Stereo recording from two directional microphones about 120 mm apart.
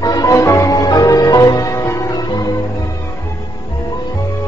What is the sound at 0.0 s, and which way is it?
Music, 30° left (ahead or behind).